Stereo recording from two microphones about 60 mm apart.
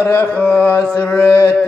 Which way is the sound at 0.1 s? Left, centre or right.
Left.